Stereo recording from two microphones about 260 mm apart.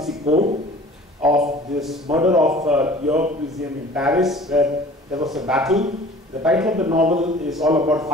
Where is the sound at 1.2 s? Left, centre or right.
Centre.